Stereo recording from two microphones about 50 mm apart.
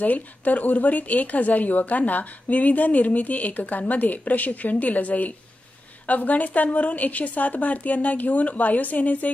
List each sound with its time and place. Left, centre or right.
0.0 s speech: left